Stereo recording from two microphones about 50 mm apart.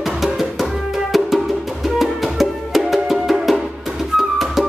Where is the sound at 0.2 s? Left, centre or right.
Centre.